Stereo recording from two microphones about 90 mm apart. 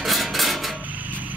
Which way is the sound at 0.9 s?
20° right (ahead or behind).